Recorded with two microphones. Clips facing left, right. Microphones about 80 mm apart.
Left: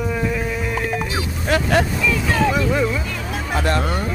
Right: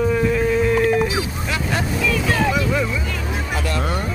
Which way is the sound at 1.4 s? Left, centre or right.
Left.